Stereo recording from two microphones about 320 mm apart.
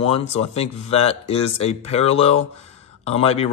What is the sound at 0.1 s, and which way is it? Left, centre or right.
A man's voice, centre.